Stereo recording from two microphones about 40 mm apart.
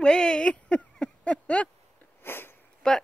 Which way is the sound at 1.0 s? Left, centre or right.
Left.